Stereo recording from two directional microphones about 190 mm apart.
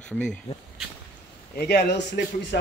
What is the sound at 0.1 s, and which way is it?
Speech, 5° left (ahead or behind).